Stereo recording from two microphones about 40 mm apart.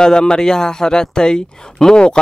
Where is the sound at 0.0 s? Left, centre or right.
Centre.